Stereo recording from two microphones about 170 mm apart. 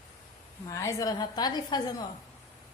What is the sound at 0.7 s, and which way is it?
A woman's voice, 20° left (ahead or behind).